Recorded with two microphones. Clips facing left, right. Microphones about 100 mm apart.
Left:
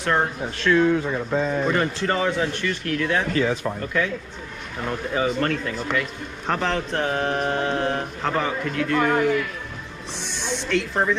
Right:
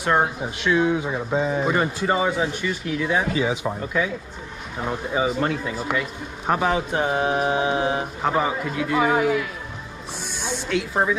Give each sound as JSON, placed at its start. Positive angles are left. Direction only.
{"t": 0.0, "sound": "speech", "side_deg": -10}